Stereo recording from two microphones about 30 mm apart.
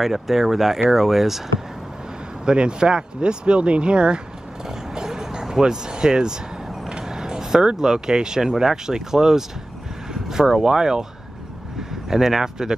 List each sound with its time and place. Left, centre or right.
0.0 s speech: centre
2.4 s speech: right
4.6 s a sound: centre
6.9 s vehicle: right
7.7 s speech: centre
10.1 s vehicle: centre
10.6 s speech: centre